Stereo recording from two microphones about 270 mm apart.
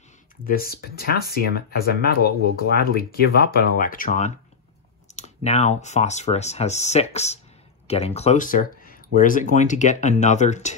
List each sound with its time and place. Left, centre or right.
0.5 s speech: left